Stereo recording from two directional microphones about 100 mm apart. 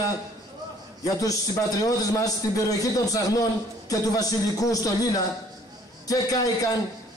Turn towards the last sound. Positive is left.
turn(degrees=35)  # may be behind; listen again after turning